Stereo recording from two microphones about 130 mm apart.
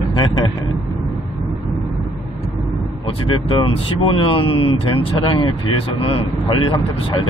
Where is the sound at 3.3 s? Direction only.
40° left (ahead or behind).